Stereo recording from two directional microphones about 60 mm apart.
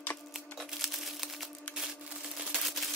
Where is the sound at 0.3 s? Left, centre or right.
Centre.